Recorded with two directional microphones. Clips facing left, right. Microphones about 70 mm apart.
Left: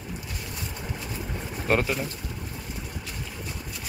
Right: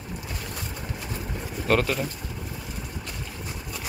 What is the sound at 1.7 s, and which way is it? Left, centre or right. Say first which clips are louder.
Speech: right 1 dB; centre.